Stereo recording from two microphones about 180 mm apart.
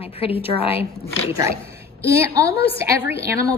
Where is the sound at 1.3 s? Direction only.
15° right (ahead or behind).